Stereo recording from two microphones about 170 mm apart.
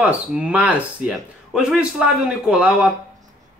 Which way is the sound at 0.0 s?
10° right (ahead or behind).